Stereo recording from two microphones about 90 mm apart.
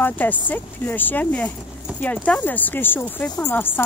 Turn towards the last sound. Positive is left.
turn(degrees=25)  # may be behind; listen again after turning